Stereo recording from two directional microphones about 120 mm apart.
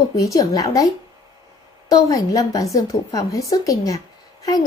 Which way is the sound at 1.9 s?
30° left (ahead or behind).